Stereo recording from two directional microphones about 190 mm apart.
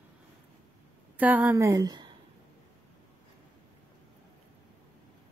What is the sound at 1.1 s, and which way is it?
A woman's voice, 10° right (ahead or behind).